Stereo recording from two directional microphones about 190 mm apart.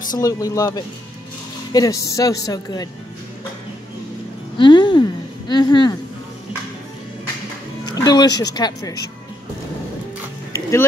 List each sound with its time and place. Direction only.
0.2 s a woman's voice: 20° left (ahead or behind)
4.6 s speech: 25° left (ahead or behind)
7.8 s a woman's voice: 20° left (ahead or behind)